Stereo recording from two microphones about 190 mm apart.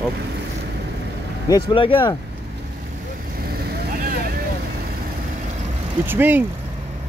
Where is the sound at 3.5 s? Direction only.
50° right (ahead or behind).